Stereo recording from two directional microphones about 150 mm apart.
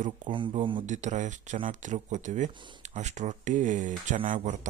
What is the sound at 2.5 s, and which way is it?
Speech, 30° right (ahead or behind).